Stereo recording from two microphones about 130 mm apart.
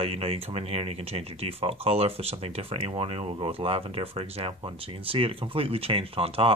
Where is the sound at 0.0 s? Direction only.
45° right (ahead or behind).